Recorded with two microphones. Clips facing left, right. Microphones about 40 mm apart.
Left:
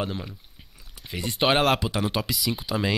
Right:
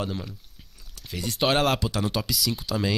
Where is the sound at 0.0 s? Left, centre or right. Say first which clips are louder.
Left 1 dB; centre.